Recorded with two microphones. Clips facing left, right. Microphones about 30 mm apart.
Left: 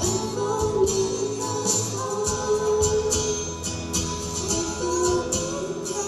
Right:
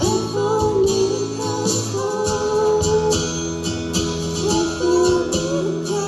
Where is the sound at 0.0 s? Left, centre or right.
Right.